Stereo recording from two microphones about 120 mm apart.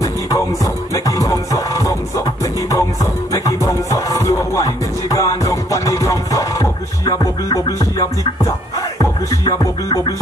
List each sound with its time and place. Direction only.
0.0 s music: 30° left (ahead or behind)